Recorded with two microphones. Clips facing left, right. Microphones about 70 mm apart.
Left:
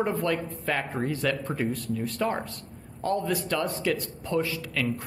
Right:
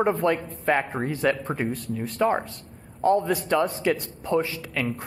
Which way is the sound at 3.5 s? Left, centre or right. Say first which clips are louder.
Right 8 dB; centre.